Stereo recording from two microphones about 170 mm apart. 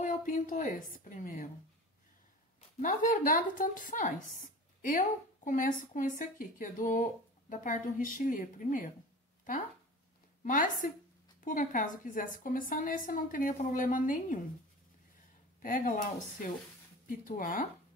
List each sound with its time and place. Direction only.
0.0 s speech: 50° left (ahead or behind)
2.8 s speech: 50° left (ahead or behind)
10.4 s speech: 50° left (ahead or behind)
15.6 s speech: 50° left (ahead or behind)